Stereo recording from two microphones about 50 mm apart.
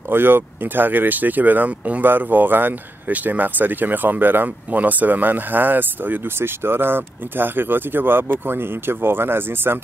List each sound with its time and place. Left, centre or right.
0.1 s speech: right